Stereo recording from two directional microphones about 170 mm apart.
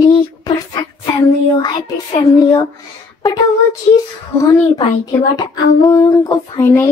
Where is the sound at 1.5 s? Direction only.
30° left (ahead or behind).